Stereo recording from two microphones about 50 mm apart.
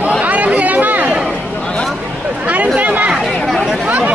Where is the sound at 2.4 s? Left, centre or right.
Right.